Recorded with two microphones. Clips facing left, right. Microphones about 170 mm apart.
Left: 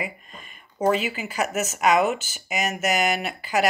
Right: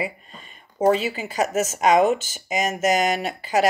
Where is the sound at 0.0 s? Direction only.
35° right (ahead or behind).